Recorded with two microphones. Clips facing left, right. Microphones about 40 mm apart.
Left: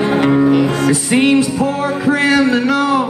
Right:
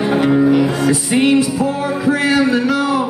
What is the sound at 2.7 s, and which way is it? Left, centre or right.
Speech, left.